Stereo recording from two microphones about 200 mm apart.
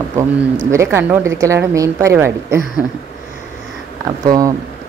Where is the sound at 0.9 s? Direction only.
10° right (ahead or behind).